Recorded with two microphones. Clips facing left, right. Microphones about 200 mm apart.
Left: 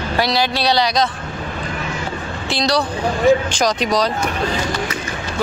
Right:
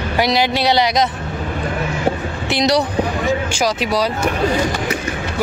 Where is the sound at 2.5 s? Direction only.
20° right (ahead or behind).